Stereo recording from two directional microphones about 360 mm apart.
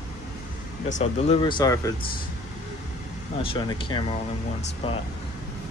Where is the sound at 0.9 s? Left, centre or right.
Centre.